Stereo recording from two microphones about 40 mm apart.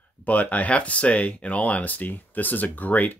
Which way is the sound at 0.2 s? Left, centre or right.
Left.